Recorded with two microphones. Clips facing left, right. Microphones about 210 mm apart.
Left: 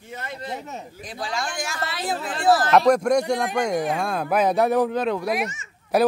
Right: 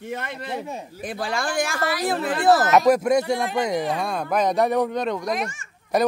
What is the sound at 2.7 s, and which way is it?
Speech, 5° right (ahead or behind).